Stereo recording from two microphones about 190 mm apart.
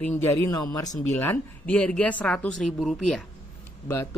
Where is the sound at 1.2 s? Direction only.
10° left (ahead or behind).